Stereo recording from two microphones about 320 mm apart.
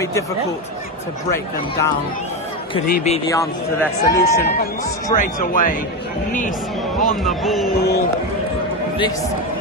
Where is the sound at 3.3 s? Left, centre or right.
Centre.